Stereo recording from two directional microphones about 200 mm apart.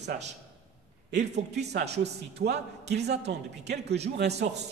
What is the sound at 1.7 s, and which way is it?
A man's voice, 55° right (ahead or behind).